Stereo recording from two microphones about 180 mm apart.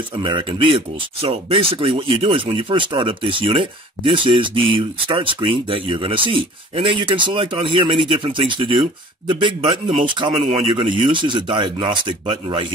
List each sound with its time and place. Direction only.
0.2 s speech: 25° right (ahead or behind)